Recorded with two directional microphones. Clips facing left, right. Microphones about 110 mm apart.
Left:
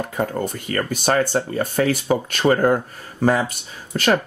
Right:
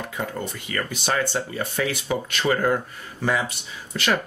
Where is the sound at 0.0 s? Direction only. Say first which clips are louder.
Left 6 dB; 45° left (ahead or behind).